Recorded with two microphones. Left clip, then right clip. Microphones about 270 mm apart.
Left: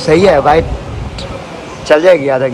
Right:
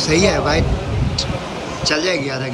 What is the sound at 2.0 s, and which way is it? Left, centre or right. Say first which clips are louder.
Speech: left 12 dB; centre.